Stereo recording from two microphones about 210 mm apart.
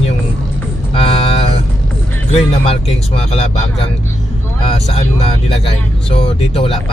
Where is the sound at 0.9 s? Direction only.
30° left (ahead or behind).